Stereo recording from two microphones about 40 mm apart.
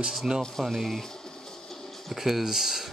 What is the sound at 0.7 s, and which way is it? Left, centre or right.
Speech, centre.